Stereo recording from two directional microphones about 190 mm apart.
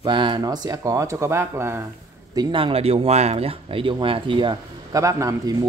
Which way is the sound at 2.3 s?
25° right (ahead or behind).